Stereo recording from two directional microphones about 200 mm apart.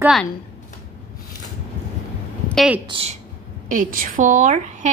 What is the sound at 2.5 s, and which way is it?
Speech, centre (ahead or behind).